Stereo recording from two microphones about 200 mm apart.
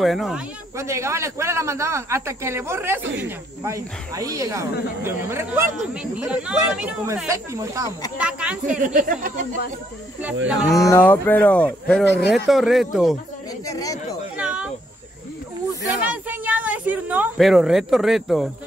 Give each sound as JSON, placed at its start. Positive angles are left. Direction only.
{"t": 0.0, "sound": "speech", "side_deg": 0}
{"t": 0.7, "sound": "speech", "side_deg": -15}
{"t": 8.2, "sound": "speech", "side_deg": -5}
{"t": 8.7, "sound": "speech", "side_deg": -40}
{"t": 10.3, "sound": "speech", "side_deg": -70}
{"t": 10.8, "sound": "speech", "side_deg": 10}
{"t": 12.0, "sound": "speech", "side_deg": 60}
{"t": 12.4, "sound": "speech", "side_deg": 0}
{"t": 13.7, "sound": "speech", "side_deg": 15}
{"t": 14.3, "sound": "a sound", "side_deg": -5}
{"t": 16.3, "sound": "speech", "side_deg": -10}